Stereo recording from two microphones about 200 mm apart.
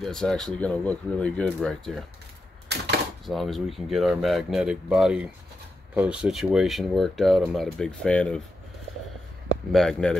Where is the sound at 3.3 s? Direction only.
Centre (ahead or behind).